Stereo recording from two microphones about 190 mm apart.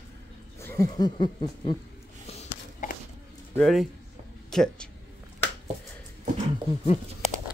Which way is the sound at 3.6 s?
Centre (ahead or behind).